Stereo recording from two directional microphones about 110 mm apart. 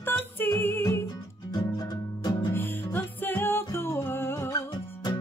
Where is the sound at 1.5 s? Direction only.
35° left (ahead or behind).